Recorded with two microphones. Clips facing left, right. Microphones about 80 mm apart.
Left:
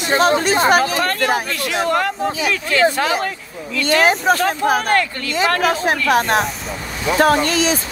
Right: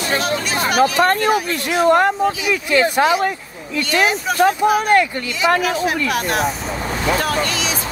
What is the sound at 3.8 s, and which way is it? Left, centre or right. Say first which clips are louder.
Speech: left 4 dB; left.